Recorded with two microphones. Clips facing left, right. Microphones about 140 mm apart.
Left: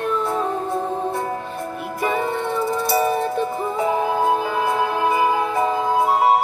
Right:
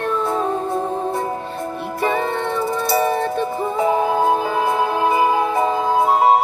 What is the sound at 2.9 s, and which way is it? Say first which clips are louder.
Music: right 2 dB; 20° right (ahead or behind).